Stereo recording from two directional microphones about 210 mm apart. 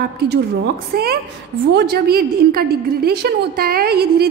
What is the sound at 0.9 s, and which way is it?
A woman's voice, 45° right (ahead or behind).